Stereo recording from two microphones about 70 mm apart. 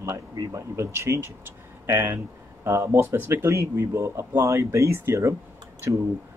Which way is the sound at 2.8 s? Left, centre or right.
Right.